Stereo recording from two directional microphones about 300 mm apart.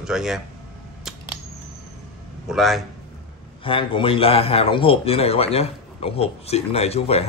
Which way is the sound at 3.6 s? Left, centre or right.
Centre.